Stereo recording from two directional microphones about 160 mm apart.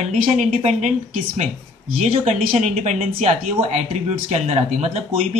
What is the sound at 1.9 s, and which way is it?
Speech, 40° right (ahead or behind).